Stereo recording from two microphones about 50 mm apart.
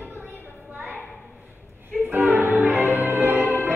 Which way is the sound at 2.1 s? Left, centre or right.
Right.